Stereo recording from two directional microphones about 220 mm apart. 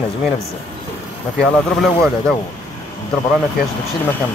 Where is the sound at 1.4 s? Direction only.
5° left (ahead or behind).